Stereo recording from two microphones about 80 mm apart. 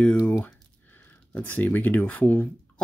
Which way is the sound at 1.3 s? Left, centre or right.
Left.